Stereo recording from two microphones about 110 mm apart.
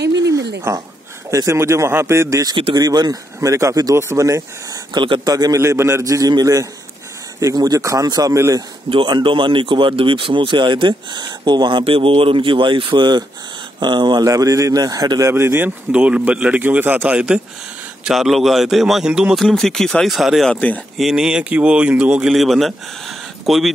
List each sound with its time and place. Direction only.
0.7 s a man's voice: 25° right (ahead or behind)
2.5 s speech: 50° right (ahead or behind)
2.8 s speech: 35° right (ahead or behind)
4.9 s speech: 45° right (ahead or behind)
5.3 s speech: 35° right (ahead or behind)
5.6 s a man's voice: 25° right (ahead or behind)
8.9 s speech: 45° right (ahead or behind)
11.8 s a man's voice: 60° right (ahead or behind); by 23.7 s centre (ahead or behind)